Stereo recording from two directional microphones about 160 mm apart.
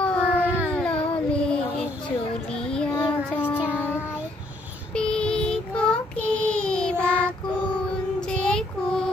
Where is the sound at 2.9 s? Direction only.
15° left (ahead or behind).